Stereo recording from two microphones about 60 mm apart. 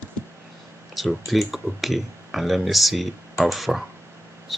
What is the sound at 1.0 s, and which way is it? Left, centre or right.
Speech, centre.